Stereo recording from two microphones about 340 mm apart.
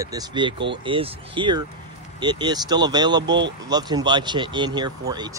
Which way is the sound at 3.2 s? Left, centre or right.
Right.